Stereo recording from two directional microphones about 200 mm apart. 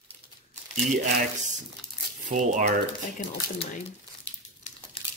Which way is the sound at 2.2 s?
40° right (ahead or behind).